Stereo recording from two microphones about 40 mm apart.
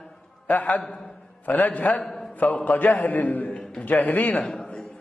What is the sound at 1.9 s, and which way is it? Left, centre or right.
A man's voice, left.